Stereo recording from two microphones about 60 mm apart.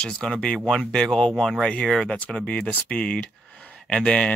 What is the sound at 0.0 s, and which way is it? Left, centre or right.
Speech, centre.